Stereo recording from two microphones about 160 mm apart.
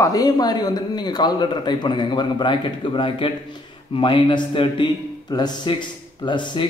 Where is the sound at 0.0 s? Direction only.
25° left (ahead or behind).